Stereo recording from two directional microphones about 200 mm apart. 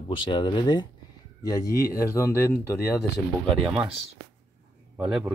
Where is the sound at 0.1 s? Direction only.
25° left (ahead or behind).